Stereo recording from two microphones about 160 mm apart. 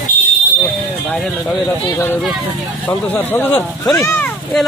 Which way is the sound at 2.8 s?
10° left (ahead or behind).